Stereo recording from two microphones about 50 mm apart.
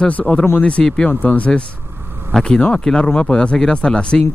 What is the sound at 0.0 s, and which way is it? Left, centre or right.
Speech, left.